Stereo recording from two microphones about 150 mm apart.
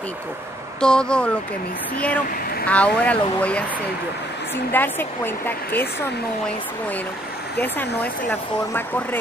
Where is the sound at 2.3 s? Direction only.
85° left.